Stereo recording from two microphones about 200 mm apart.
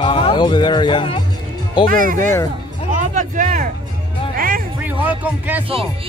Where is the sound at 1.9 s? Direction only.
45° right (ahead or behind).